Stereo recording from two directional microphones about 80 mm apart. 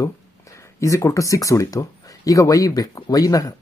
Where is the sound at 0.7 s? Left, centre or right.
Left.